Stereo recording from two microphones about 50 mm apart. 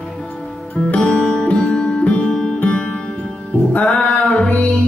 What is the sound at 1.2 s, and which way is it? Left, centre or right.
Music, centre.